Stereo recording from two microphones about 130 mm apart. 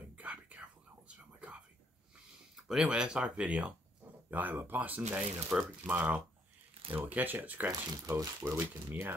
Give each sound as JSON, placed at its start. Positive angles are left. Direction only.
{"t": 0.1, "sound": "whispering", "side_deg": -10}
{"t": 2.5, "sound": "speech", "side_deg": -5}